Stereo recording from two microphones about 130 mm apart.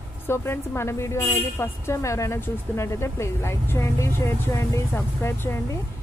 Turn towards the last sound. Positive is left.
turn(degrees=20)  # may be behind; listen again after turning